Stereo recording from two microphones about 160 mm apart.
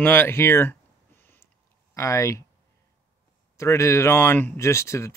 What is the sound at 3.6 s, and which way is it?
Speech, 20° left (ahead or behind).